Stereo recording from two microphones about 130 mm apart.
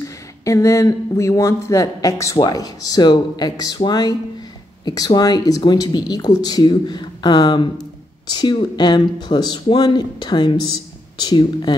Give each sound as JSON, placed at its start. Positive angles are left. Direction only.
{"t": 0.0, "sound": "speech", "side_deg": 25}